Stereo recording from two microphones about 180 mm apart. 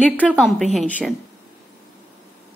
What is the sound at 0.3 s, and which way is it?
Speech, centre (ahead or behind).